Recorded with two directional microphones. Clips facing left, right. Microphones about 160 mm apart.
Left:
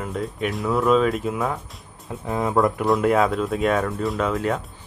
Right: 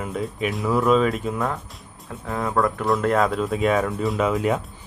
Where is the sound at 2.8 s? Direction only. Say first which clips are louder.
Even; 5° left (ahead or behind).